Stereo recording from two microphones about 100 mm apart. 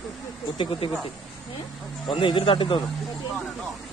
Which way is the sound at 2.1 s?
65° left (ahead or behind).